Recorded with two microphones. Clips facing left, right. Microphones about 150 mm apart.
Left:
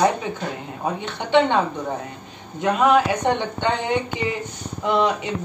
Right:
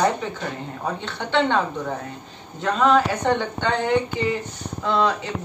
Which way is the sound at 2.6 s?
15° left (ahead or behind).